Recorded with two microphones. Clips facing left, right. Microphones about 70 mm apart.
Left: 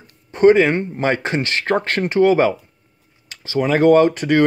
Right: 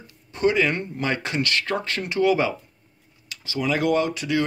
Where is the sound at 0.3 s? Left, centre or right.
Left.